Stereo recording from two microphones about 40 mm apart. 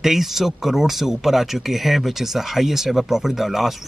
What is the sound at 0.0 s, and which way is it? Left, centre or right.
A man's voice, centre.